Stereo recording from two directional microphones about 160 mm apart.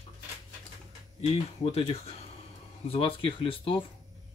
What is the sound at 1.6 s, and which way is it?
Speech, 40° left (ahead or behind).